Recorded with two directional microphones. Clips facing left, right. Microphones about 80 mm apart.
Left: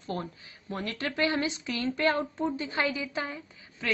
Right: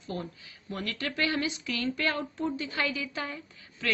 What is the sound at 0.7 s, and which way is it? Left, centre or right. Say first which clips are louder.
A woman's voice: left 1 dB; left.